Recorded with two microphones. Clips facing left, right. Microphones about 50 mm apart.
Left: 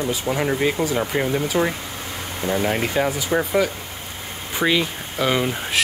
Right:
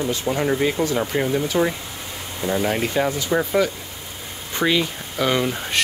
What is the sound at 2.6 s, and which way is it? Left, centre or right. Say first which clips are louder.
Speech: even; centre.